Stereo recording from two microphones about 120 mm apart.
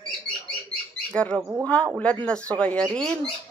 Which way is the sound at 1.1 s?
10° left (ahead or behind).